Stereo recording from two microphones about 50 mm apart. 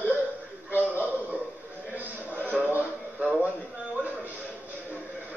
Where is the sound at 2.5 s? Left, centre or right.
Right.